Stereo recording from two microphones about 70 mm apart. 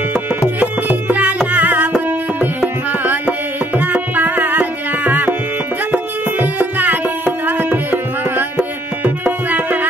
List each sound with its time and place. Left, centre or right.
0.6 s music: right
7.4 s tabla: right
9.0 s music: right